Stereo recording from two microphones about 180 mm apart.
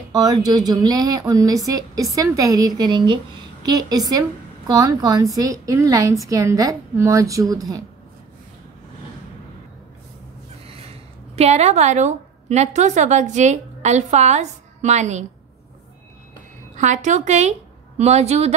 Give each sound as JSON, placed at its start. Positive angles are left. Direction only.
{"t": 0.1, "sound": "speech", "side_deg": -20}
{"t": 11.3, "sound": "a woman's voice", "side_deg": -35}
{"t": 16.7, "sound": "a woman's voice", "side_deg": -40}